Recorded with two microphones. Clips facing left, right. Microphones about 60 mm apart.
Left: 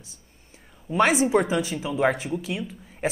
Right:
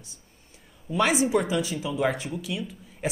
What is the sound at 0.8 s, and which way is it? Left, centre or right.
Speech, left.